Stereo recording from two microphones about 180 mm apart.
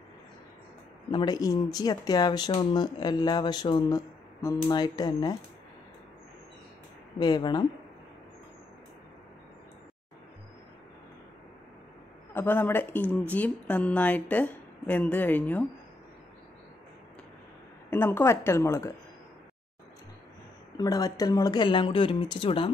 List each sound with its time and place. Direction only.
1.1 s speech: 20° left (ahead or behind)
7.2 s speech: 25° left (ahead or behind)
12.4 s a woman's voice: 10° left (ahead or behind)
17.8 s a woman's voice: 10° left (ahead or behind)
20.7 s speech: 20° left (ahead or behind)